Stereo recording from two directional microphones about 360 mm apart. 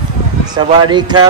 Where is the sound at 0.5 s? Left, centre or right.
Centre.